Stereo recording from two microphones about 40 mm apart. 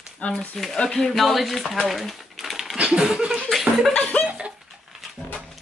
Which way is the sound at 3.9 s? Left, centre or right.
Left.